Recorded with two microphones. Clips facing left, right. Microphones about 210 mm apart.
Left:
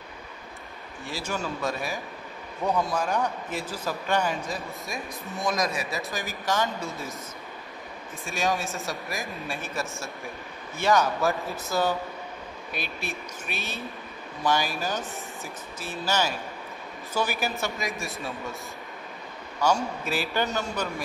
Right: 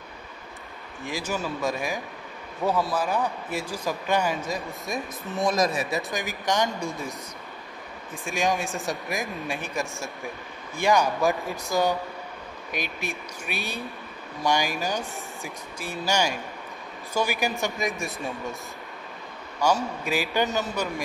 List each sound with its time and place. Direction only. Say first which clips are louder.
1.0 s speech: right 2 dB; 15° right (ahead or behind)
2.6 s speech: right 1 dB; centre (ahead or behind)
4.8 s speech: right 4 dB; centre (ahead or behind)
6.1 s speech: right 1 dB; 15° right (ahead or behind)
8.3 s speech: right 2 dB; 15° right (ahead or behind)
17.7 s speech: right 3 dB; centre (ahead or behind)
19.6 s speech: right 1 dB; 10° right (ahead or behind)